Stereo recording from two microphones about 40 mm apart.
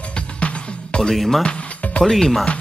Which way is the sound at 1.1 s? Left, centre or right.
Centre.